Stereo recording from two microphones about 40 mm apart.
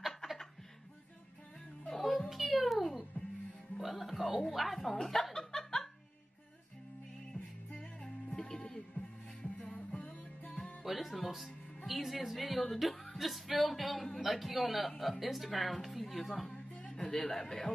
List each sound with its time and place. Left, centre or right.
1.9 s music: centre
2.2 s a sound: centre
2.5 s a sound: centre
3.7 s music: centre
4.5 s speech: centre
5.0 s chuckle: centre
7.3 s music: left
7.8 s music: centre
10.8 s music: centre
12.7 s speech: centre
17.1 s speech: centre